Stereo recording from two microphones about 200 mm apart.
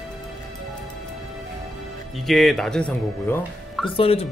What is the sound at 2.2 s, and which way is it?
Speech, centre (ahead or behind).